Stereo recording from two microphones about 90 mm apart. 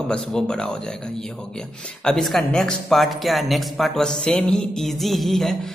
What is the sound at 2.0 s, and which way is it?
Speech, 5° left (ahead or behind).